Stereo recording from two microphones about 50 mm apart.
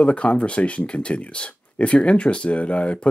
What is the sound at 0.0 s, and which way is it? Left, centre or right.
Speech, left.